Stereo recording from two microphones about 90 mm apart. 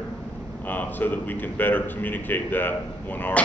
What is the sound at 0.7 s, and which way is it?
A man's voice, 20° left (ahead or behind).